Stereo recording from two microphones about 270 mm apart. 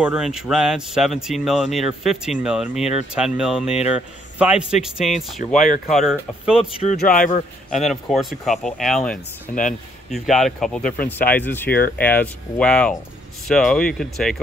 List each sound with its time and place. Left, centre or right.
0.0 s speech: centre
5.4 s speech: left
5.9 s speech: centre
6.7 s speech: left
7.7 s speech: centre